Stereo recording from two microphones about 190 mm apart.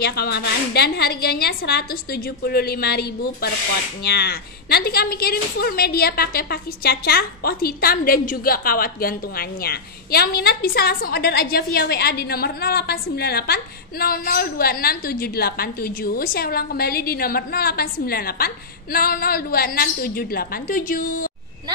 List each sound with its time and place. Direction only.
0.0 s a woman's voice: 55° left (ahead or behind)